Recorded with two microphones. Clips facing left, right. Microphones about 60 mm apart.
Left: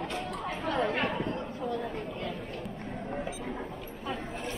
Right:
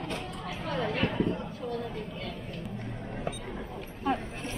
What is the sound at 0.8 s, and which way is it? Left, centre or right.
Speech, left.